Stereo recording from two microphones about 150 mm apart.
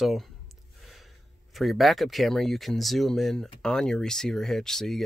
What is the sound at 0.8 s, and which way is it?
Gasp, centre (ahead or behind).